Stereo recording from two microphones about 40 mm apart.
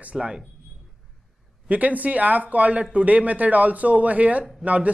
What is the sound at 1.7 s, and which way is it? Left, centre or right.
Speech, right.